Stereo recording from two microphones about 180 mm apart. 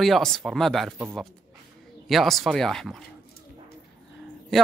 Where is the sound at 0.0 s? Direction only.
Centre (ahead or behind).